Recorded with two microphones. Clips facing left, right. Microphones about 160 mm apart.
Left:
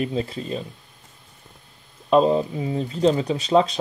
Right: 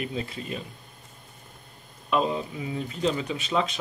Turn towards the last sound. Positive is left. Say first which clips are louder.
# left 8 dB
turn(degrees=35)  # may be behind; listen again after turning